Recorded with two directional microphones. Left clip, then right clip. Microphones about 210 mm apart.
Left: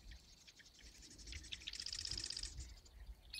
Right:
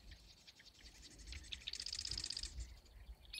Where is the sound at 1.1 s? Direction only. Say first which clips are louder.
Even; 30° left (ahead or behind).